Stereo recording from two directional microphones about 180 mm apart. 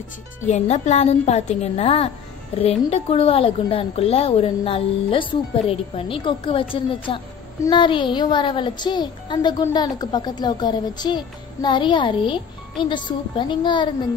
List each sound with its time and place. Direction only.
0.5 s a woman's voice: 40° left (ahead or behind); by 13.8 s 25° left (ahead or behind)